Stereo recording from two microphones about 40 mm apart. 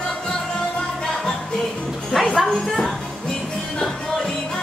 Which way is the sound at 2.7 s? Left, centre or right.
Centre.